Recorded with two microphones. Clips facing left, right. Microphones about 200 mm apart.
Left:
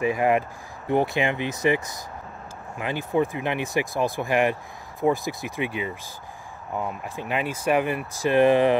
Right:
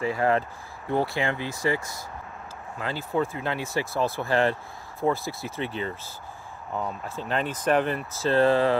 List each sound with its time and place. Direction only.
0.0 s speech: 15° left (ahead or behind)